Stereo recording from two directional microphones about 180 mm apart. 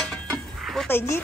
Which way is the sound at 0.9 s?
15° left (ahead or behind).